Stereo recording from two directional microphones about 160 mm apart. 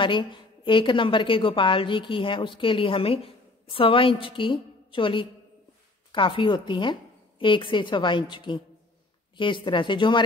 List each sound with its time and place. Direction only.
0.0 s a woman's voice: 30° left (ahead or behind)